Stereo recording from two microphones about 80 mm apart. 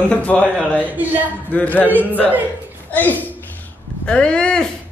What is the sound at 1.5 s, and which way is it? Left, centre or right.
Speech, left.